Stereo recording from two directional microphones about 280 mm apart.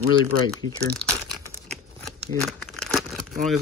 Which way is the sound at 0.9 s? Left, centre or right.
Centre.